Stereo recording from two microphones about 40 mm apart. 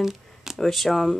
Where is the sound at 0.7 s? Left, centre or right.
Centre.